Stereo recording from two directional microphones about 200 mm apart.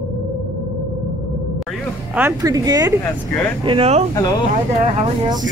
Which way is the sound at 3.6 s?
30° right (ahead or behind).